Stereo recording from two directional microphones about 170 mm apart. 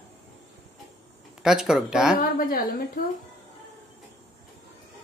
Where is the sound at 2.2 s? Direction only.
55° left (ahead or behind).